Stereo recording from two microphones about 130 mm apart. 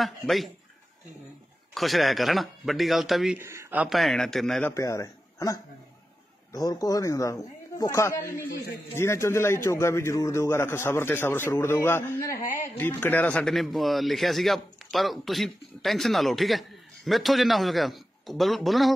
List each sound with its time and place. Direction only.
0.0 s a man's voice: centre (ahead or behind)
1.7 s a man's voice: centre (ahead or behind)
3.3 s speech: 20° right (ahead or behind)
3.8 s a man's voice: centre (ahead or behind)
4.6 s a man's voice: 25° left (ahead or behind); by 18.9 s centre (ahead or behind)